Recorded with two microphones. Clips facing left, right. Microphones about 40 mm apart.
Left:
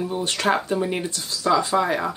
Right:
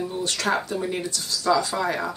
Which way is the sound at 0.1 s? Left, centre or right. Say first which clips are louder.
Left 4 dB; left.